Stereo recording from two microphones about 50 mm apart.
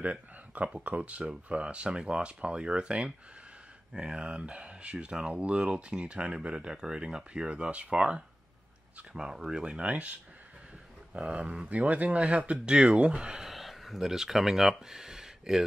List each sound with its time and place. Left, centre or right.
0.0 s speech: right
11.1 s speech: right
13.4 s speech: centre